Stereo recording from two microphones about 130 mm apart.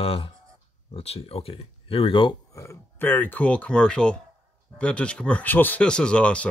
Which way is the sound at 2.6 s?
15° left (ahead or behind).